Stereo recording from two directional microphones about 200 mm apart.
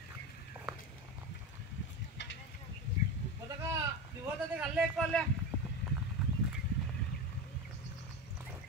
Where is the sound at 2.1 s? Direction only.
65° left (ahead or behind).